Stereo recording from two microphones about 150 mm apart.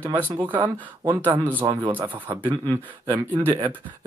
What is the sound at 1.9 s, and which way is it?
Speech, 10° right (ahead or behind).